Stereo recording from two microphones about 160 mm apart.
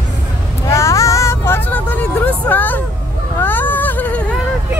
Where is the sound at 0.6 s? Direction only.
15° left (ahead or behind).